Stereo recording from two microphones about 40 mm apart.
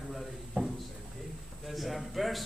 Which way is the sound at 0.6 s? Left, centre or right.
Right.